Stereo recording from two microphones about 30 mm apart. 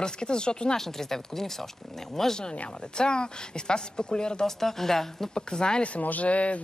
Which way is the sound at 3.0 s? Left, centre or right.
Left.